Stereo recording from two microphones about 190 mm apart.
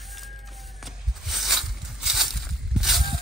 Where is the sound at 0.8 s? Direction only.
Centre (ahead or behind).